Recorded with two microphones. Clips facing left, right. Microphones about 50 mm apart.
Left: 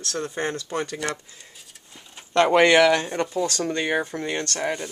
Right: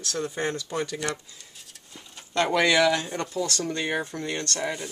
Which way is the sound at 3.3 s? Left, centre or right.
Left.